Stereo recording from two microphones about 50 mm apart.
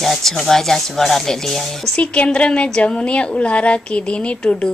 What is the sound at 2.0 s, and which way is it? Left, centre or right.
A woman's voice, left.